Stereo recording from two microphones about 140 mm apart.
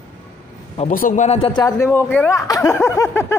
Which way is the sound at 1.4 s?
30° left (ahead or behind).